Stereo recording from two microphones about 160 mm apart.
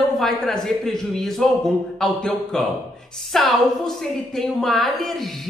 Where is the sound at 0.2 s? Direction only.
Centre (ahead or behind).